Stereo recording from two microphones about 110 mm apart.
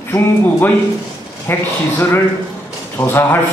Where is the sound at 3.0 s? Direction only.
20° left (ahead or behind).